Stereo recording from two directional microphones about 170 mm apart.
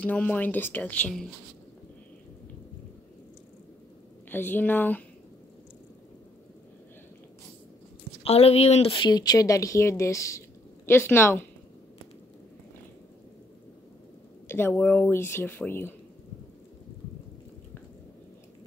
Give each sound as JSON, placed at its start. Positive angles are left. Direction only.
{"t": 0.0, "sound": "speech", "side_deg": 10}
{"t": 4.3, "sound": "speech", "side_deg": 10}
{"t": 8.2, "sound": "speech", "side_deg": 35}
{"t": 14.5, "sound": "speech", "side_deg": 10}